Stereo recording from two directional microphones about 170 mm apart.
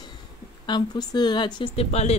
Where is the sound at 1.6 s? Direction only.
40° left (ahead or behind).